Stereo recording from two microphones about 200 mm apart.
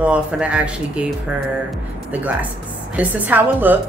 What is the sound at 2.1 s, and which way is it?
A woman's voice, 10° right (ahead or behind).